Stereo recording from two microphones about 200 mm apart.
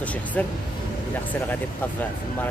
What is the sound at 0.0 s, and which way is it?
Vehicle, 5° left (ahead or behind).